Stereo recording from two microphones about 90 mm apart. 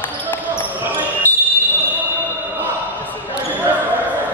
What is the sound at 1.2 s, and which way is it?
Basketball bounce, 20° left (ahead or behind).